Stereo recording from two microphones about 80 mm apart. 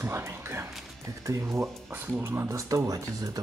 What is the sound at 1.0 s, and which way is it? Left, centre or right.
Speech, right.